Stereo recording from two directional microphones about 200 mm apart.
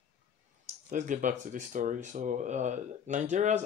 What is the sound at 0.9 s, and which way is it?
Speech, 40° right (ahead or behind).